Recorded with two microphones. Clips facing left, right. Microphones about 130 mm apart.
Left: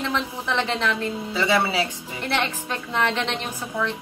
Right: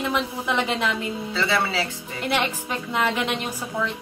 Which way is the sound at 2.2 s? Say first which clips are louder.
Right 1 dB; 15° right (ahead or behind).